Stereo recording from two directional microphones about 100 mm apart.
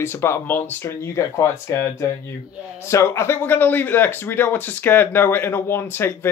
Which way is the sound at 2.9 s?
30° left (ahead or behind).